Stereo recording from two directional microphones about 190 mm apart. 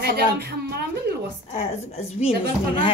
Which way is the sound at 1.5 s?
35° left (ahead or behind).